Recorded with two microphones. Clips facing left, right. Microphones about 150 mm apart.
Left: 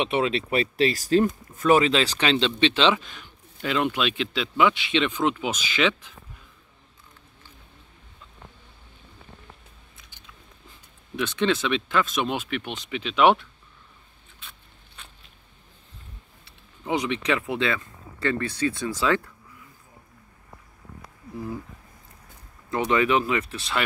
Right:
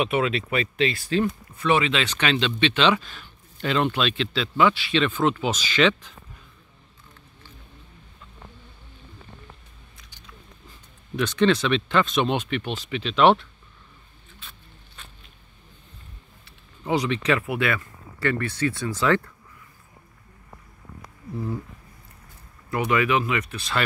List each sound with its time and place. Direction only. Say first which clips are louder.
0.0 s speech: right 1 dB; 30° left (ahead or behind); by 6.1 s 10° left (ahead or behind)
11.1 s speech: right 3 dB; 10° left (ahead or behind)
16.8 s speech: right 2 dB; 15° left (ahead or behind)
22.7 s speech: left 1 dB; 30° left (ahead or behind)